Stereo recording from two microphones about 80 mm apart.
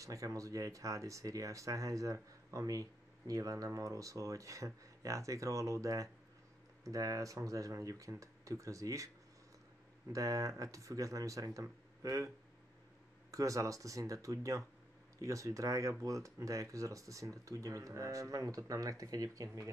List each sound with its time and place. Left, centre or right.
0.0 s speech: right
10.1 s speech: right
13.3 s speech: right